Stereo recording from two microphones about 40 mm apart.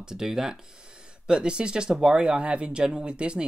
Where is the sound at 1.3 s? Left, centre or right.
Right.